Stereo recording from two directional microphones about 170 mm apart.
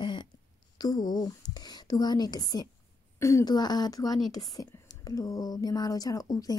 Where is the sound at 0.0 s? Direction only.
30° left (ahead or behind).